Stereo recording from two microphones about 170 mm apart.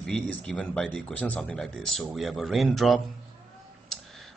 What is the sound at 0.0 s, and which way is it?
Speech, 5° left (ahead or behind).